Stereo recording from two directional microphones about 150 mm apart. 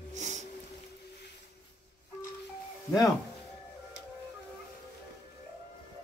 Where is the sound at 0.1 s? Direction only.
50° right (ahead or behind).